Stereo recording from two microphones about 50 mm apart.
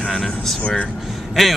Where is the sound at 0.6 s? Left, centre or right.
Left.